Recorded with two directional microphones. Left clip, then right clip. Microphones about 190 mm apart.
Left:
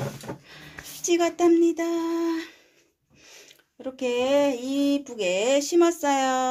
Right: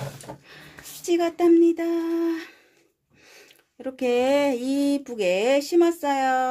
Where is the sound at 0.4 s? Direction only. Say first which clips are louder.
Left 2 dB; 30° right (ahead or behind).